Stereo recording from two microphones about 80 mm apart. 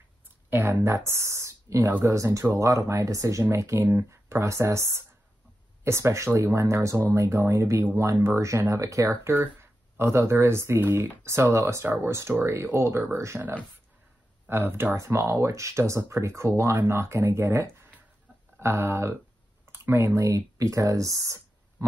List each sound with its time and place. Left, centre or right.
0.5 s speech: right
9.3 s speech: right
14.5 s speech: right
15.0 s speech: right